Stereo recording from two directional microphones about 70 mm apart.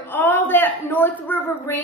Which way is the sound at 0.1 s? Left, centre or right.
Left.